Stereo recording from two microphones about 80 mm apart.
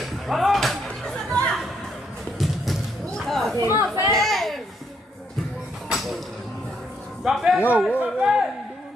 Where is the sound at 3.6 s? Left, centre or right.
Right.